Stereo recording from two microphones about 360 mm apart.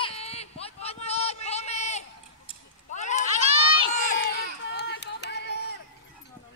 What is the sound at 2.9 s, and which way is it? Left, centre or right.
Run, centre.